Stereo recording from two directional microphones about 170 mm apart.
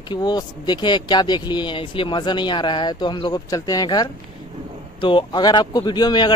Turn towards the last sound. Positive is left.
turn(degrees=25)  # may be behind; listen again after turning